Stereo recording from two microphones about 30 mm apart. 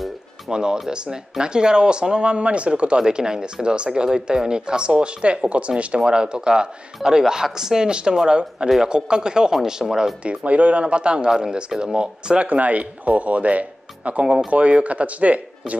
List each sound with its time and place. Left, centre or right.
0.5 s speech: right
3.0 s speech: right
5.9 s speech: right
10.4 s speech: right
11.2 s speech: right
11.8 s speech: right
12.4 s speech: right